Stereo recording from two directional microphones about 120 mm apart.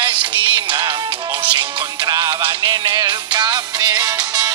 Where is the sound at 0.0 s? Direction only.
40° right (ahead or behind).